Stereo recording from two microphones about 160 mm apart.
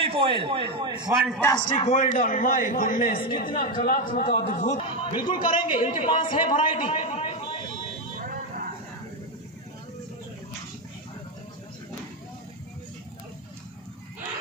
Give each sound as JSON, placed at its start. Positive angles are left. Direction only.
{"t": 0.0, "sound": "a man's voice", "side_deg": -35}
{"t": 0.9, "sound": "a man's voice", "side_deg": -5}
{"t": 1.8, "sound": "a man's voice", "side_deg": 45}
{"t": 8.2, "sound": "buzzer", "side_deg": -60}